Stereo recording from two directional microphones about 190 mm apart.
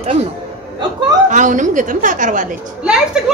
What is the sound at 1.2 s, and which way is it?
A woman's voice, 40° right (ahead or behind).